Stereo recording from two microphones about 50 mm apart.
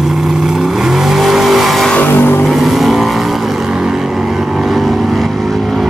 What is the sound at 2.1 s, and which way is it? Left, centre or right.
Vehicle, left.